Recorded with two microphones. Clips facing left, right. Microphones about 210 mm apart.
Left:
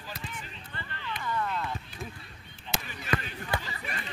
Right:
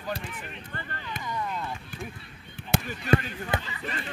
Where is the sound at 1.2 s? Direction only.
15° right (ahead or behind).